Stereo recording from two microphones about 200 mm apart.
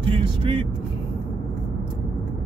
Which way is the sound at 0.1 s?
25° right (ahead or behind).